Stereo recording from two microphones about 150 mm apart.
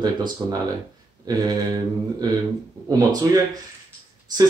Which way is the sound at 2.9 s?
25° right (ahead or behind).